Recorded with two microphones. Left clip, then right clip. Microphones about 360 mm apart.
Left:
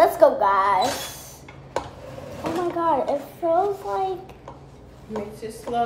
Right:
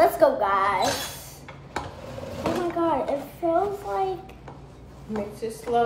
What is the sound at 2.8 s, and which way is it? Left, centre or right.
Speech, centre.